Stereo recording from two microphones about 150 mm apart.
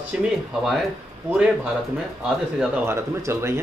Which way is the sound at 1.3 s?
10° right (ahead or behind).